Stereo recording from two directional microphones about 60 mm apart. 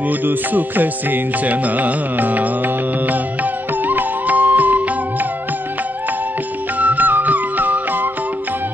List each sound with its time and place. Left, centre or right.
0.1 s music: right
6.8 s music: right